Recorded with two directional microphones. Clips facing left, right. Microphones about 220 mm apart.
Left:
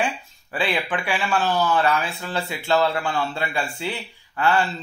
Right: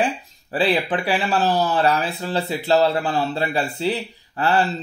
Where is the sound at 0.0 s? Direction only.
35° right (ahead or behind).